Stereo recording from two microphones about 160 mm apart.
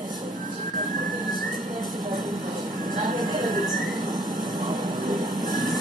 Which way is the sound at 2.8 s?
55° right (ahead or behind).